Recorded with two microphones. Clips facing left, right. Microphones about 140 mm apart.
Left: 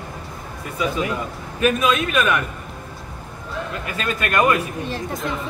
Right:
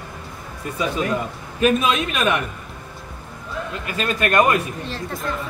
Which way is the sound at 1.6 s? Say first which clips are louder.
Even; 30° right (ahead or behind).